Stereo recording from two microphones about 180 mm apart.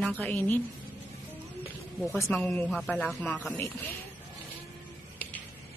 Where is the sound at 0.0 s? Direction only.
10° left (ahead or behind).